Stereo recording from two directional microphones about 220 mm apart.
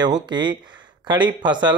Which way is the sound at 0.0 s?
20° right (ahead or behind).